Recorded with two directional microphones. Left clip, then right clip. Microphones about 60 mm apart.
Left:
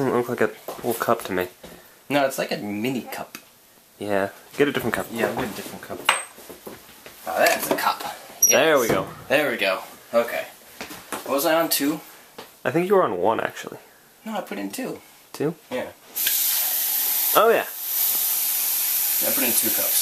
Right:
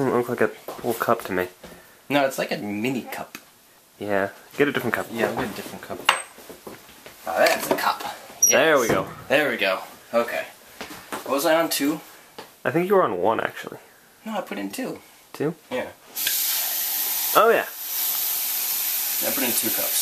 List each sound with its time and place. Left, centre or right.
0.0 s a sound: centre
0.7 s speech: centre
4.0 s speech: left
5.1 s speech: centre
7.2 s speech: centre
7.8 s mouse: centre
8.5 s speech: left
8.9 s speech: centre
14.2 s speech: centre
15.7 s water tap: centre